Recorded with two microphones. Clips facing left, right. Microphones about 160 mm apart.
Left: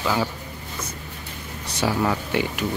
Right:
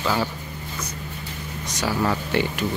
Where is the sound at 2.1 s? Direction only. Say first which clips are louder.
Right 1 dB; 10° left (ahead or behind).